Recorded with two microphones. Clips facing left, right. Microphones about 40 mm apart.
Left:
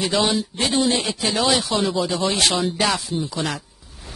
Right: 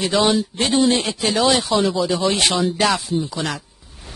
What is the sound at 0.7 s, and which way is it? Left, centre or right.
Speech, right.